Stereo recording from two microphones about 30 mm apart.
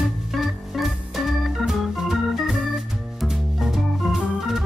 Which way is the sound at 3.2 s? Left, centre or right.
Centre.